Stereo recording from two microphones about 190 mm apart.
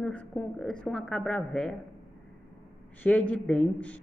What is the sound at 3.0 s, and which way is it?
Speech, 5° left (ahead or behind).